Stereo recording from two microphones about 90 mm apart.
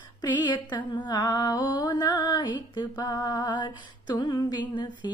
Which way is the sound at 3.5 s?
55° left (ahead or behind).